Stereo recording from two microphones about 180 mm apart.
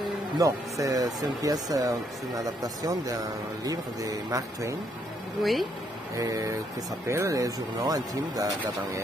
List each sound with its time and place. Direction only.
0.4 s speech: 20° right (ahead or behind)
5.4 s speech: centre (ahead or behind)
6.1 s speech: 20° right (ahead or behind)